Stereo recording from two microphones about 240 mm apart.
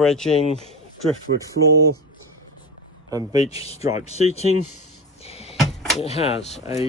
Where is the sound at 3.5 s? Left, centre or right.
Left.